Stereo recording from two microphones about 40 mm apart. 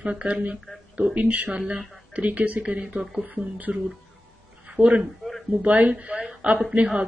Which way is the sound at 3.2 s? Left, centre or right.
Right.